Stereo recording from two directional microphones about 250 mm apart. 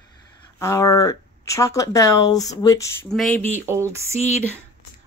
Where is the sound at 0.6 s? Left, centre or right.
Centre.